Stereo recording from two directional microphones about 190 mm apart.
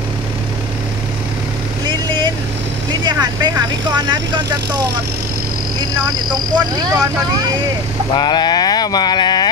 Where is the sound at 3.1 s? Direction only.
20° right (ahead or behind).